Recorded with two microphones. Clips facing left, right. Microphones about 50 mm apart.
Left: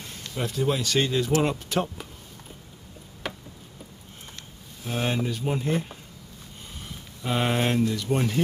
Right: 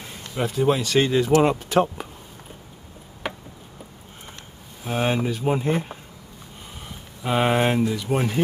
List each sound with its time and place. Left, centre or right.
0.3 s speech: centre
3.2 s tick-tock: centre
4.8 s speech: centre
7.2 s speech: centre